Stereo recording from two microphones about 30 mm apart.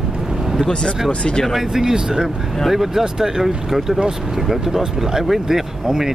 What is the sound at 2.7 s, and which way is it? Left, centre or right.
Speech, centre.